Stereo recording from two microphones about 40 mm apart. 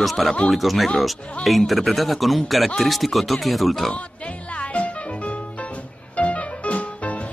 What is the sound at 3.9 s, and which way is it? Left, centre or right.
Music, left.